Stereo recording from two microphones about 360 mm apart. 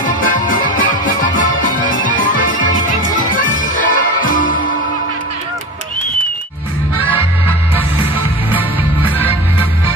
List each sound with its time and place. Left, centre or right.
0.0 s music: left
8.5 s music: centre